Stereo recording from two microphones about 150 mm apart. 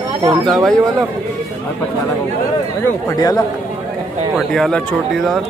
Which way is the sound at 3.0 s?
25° left (ahead or behind).